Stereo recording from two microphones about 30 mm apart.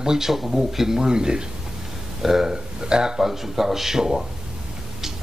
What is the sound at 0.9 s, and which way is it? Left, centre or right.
Speech, right.